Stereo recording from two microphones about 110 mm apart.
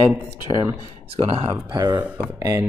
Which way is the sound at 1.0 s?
65° right (ahead or behind).